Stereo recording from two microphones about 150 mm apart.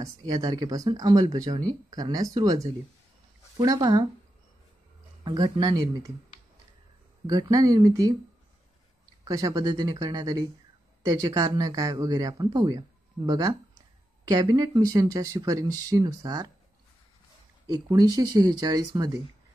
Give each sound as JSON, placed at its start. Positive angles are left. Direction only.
{"t": 0.0, "sound": "a man's voice", "side_deg": -25}
{"t": 5.2, "sound": "a man's voice", "side_deg": -30}
{"t": 7.2, "sound": "a man's voice", "side_deg": -25}
{"t": 9.2, "sound": "a man's voice", "side_deg": -25}
{"t": 17.6, "sound": "a man's voice", "side_deg": -25}